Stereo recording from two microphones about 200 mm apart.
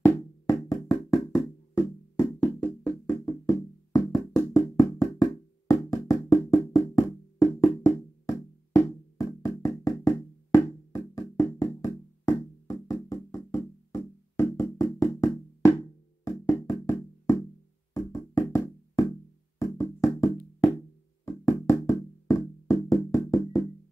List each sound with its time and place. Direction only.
0.0 s music: 15° left (ahead or behind)
17.9 s music: 15° left (ahead or behind)